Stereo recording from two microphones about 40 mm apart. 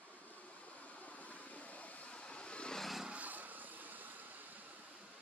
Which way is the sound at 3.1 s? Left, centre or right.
Right.